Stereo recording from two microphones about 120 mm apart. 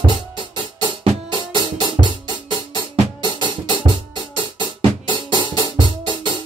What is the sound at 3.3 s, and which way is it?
Music, 40° right (ahead or behind).